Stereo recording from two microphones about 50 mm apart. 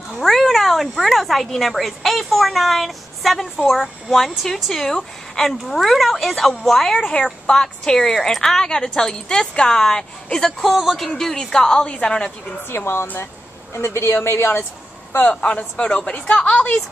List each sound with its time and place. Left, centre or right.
0.2 s a woman's voice: centre
10.6 s a woman's voice: centre
12.6 s a woman's voice: left
15.2 s a woman's voice: left